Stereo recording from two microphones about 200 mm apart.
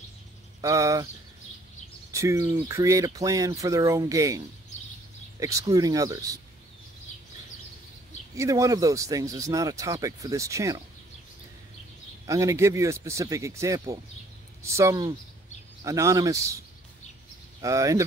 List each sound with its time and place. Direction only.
0.6 s a sound: 15° right (ahead or behind)
2.1 s speech: 15° right (ahead or behind)
5.4 s speech: 15° right (ahead or behind)
8.4 s speech: 15° right (ahead or behind)
12.3 s speech: 15° right (ahead or behind)
17.6 s speech: 15° right (ahead or behind)